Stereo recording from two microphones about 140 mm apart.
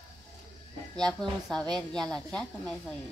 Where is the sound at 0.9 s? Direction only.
5° left (ahead or behind).